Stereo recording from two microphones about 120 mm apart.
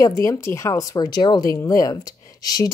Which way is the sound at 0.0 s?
25° left (ahead or behind).